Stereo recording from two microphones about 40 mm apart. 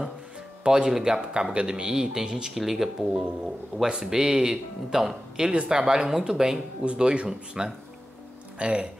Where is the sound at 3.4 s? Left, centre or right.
Centre.